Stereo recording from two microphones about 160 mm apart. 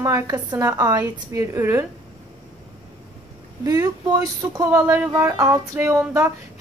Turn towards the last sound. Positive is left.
turn(degrees=-15)  # may be behind; listen again after turning